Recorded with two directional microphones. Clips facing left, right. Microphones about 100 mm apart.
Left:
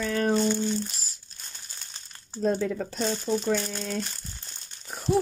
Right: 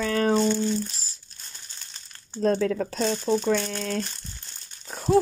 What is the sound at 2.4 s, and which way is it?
Speech, 90° right.